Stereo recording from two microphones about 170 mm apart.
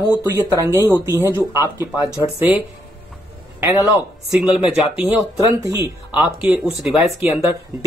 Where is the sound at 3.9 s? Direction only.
5° right (ahead or behind).